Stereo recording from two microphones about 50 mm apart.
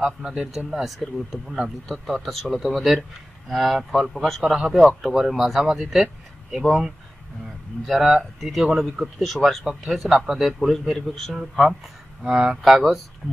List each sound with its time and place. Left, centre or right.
0.2 s speech: centre
4.4 s speech: centre
4.6 s speech: centre
8.0 s speech: centre
11.3 s speech: centre
12.6 s speech: centre